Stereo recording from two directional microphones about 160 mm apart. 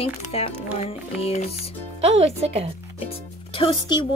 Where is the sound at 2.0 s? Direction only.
40° right (ahead or behind).